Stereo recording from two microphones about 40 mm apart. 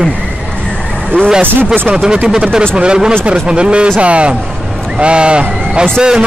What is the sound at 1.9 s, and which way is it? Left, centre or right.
Speech, right.